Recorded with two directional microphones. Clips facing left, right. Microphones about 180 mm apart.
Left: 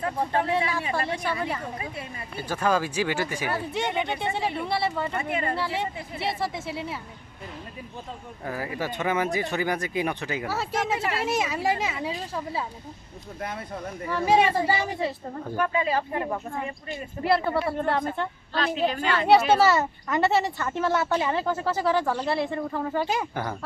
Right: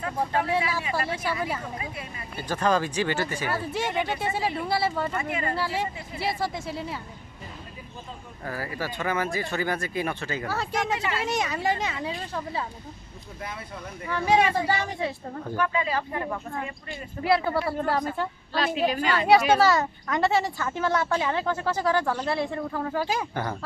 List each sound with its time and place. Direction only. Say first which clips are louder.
0.5 s a woman's voice: left 1 dB; 5° right (ahead or behind)
0.8 s speech: left 1 dB; 25° left (ahead or behind)
2.4 s speech: right 1 dB; 10° left (ahead or behind)
3.5 s a woman's voice: even; centre (ahead or behind)
5.1 s speech: left 1 dB; 30° left (ahead or behind)
5.6 s a woman's voice: even; centre (ahead or behind)
8.5 s a woman's voice: left 2 dB; 15° left (ahead or behind)
14.0 s a woman's voice: left 1 dB; centre (ahead or behind)
15.5 s speech: left 2 dB; 25° left (ahead or behind)
17.2 s a woman's voice: even; centre (ahead or behind)